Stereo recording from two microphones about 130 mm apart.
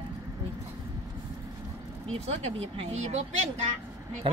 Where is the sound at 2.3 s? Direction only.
55° right (ahead or behind).